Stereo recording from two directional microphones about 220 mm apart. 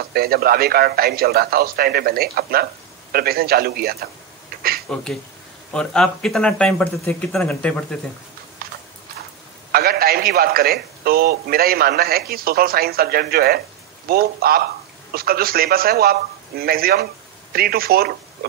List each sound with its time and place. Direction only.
0.1 s a man's voice: 45° right (ahead or behind)
4.8 s speech: 5° left (ahead or behind)
9.7 s a man's voice: 45° right (ahead or behind)